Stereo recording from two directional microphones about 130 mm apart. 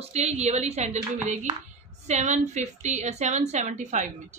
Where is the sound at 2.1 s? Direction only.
60° right (ahead or behind).